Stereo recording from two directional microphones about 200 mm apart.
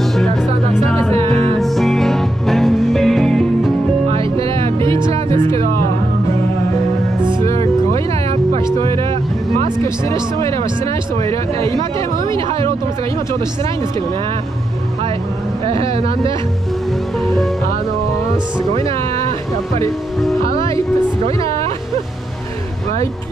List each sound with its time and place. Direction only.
0.0 s music: centre (ahead or behind)
4.1 s music: 25° right (ahead or behind)
7.5 s music: 30° right (ahead or behind)
10.4 s music: 15° left (ahead or behind)
11.2 s a sound: 15° left (ahead or behind)
12.4 s music: 25° right (ahead or behind)
15.6 s speech: 30° right (ahead or behind)
17.2 s speech: centre (ahead or behind)
18.8 s speech: 30° right (ahead or behind)
21.4 s music: 15° left (ahead or behind)